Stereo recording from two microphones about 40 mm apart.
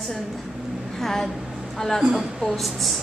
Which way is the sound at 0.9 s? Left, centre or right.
Centre.